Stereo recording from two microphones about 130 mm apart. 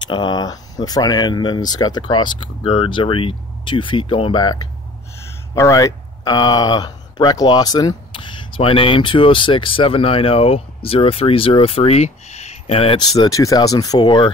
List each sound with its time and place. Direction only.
0.1 s speech: 35° left (ahead or behind); by 12.9 s 50° left (ahead or behind)
12.9 s speech: 35° left (ahead or behind)